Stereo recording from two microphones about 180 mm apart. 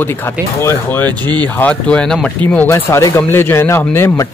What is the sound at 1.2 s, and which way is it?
Speech, 25° right (ahead or behind).